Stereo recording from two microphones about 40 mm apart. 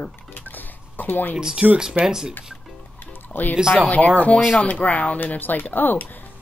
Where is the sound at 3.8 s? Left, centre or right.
Left.